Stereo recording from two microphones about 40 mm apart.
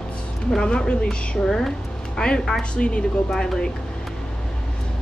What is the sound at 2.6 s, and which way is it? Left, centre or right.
A woman's voice, left.